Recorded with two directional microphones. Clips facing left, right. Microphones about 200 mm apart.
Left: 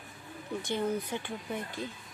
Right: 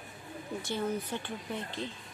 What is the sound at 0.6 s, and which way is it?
A woman's voice, 15° left (ahead or behind).